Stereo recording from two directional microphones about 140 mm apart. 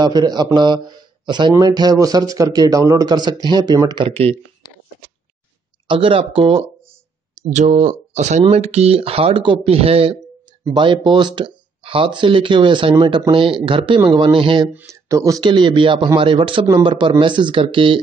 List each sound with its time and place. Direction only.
0.0 s a man's voice: 30° right (ahead or behind)
5.9 s speech: 40° right (ahead or behind)
7.4 s speech: 60° right (ahead or behind); by 14.7 s 35° right (ahead or behind)
14.7 s speech: 10° right (ahead or behind)
15.0 s speech: 25° right (ahead or behind)